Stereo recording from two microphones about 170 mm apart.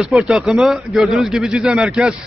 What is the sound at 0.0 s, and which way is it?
A man's voice, centre (ahead or behind).